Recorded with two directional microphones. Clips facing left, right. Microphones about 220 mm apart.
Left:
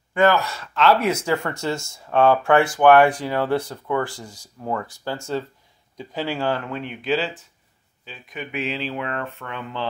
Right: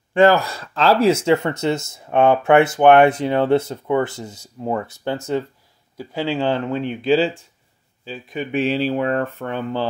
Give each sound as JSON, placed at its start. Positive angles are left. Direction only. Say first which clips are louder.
{"t": 0.1, "sound": "speech", "louder": "right 4 dB", "side_deg": -30}